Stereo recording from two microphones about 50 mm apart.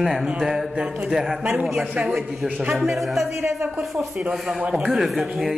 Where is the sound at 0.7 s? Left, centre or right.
Right.